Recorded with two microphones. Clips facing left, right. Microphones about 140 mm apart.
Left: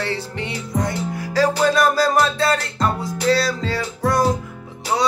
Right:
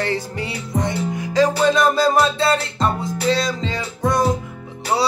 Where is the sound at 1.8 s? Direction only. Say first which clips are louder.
Right 1 dB; 25° right (ahead or behind).